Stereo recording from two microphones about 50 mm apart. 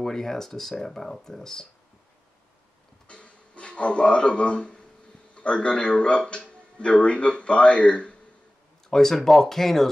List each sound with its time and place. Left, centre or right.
0.0 s speech: centre
3.1 s a man's voice: left
8.9 s speech: centre